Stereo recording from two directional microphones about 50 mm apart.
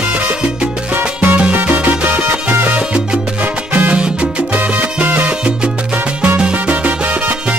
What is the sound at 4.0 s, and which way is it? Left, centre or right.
Salsa music, right.